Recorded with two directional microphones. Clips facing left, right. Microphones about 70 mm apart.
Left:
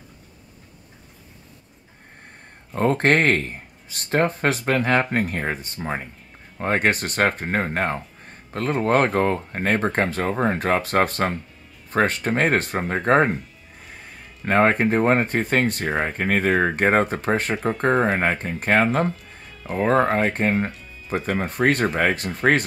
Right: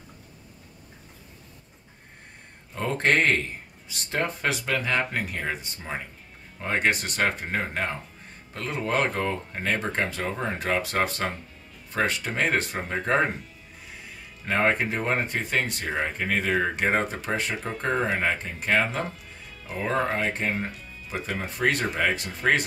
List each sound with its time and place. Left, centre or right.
2.7 s speech: left
14.4 s speech: left
19.0 s music: centre
19.9 s speech: left
20.5 s speech: centre
21.3 s speech: left